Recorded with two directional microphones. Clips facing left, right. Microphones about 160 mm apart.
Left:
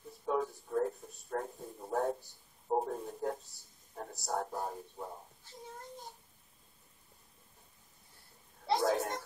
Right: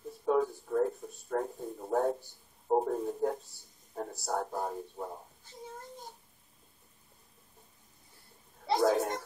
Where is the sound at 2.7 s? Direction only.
30° right (ahead or behind).